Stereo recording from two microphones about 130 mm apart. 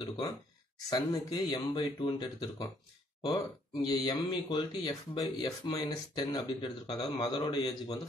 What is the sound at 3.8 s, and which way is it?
Speech, 35° left (ahead or behind).